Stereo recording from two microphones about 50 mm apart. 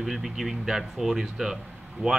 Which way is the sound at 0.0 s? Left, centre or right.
Centre.